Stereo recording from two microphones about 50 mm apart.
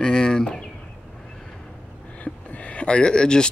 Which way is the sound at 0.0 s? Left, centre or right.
Centre.